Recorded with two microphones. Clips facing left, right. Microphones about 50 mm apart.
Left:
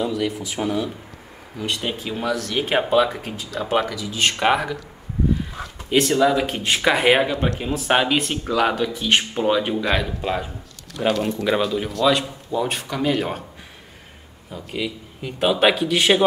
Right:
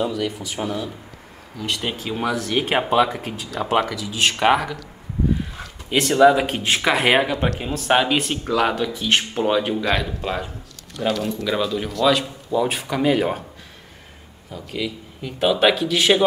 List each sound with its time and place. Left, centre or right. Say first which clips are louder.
0.1 s speech: left 1 dB; centre
2.0 s speech: right 2 dB; centre
3.1 s speech: right 1 dB; centre
5.9 s speech: right 3 dB; centre
11.1 s speech: left 2 dB; left
11.6 s speech: right 4 dB; centre
14.5 s speech: even; centre